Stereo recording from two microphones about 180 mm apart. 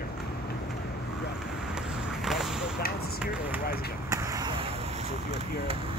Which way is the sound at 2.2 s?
Centre (ahead or behind).